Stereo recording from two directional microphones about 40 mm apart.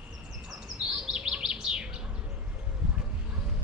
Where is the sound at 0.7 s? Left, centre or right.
Centre.